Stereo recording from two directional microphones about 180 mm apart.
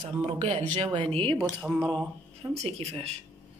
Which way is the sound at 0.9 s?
30° right (ahead or behind).